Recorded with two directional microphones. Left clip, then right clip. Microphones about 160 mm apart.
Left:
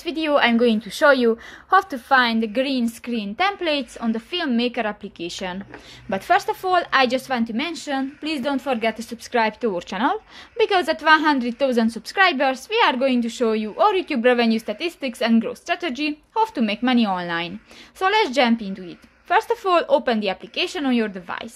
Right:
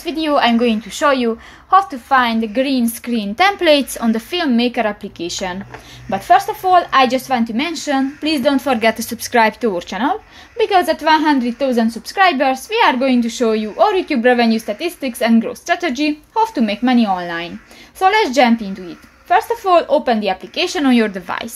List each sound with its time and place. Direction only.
0.0 s a woman's voice: 30° left (ahead or behind)
3.1 s a woman's voice: centre (ahead or behind)
6.0 s a woman's voice: 30° left (ahead or behind); by 21.5 s centre (ahead or behind)